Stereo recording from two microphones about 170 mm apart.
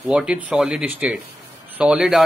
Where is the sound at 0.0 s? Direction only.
5° right (ahead or behind).